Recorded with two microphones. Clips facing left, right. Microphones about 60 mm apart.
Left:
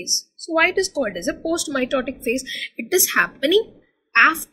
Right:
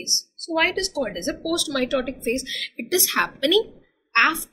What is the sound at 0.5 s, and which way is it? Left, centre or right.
Speech, left.